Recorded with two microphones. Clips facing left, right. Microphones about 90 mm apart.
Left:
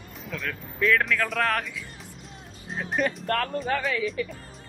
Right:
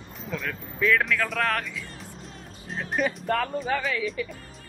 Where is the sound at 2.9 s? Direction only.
Centre (ahead or behind).